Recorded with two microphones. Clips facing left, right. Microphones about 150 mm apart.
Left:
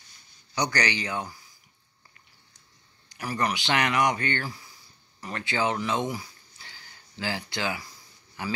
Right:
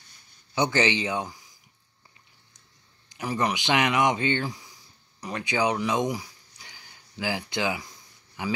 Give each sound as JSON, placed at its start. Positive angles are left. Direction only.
{"t": 0.6, "sound": "speech", "side_deg": -20}
{"t": 3.1, "sound": "a man's voice", "side_deg": -20}